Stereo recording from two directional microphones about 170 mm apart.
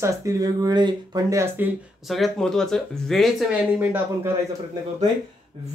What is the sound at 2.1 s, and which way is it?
Speech, centre (ahead or behind).